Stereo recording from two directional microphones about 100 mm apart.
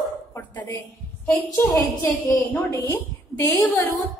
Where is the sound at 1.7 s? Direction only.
35° left (ahead or behind).